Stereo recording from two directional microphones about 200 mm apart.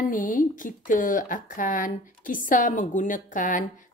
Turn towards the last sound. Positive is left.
turn(degrees=40)  # may be behind; listen again after turning